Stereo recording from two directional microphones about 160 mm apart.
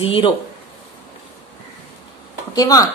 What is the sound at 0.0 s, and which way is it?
Speech, 35° left (ahead or behind).